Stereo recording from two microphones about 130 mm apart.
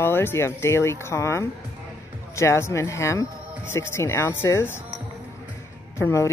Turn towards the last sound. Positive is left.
turn(degrees=25)  # may be behind; listen again after turning